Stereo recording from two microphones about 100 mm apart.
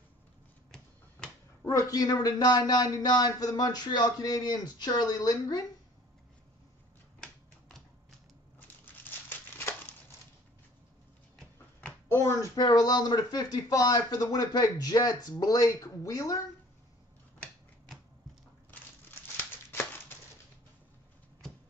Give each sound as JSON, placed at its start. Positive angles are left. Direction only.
{"t": 1.6, "sound": "a man's voice", "side_deg": 30}
{"t": 8.5, "sound": "crumpling", "side_deg": 20}
{"t": 12.1, "sound": "speech", "side_deg": 25}
{"t": 12.5, "sound": "a man's voice", "side_deg": 40}
{"t": 18.7, "sound": "a sound", "side_deg": 20}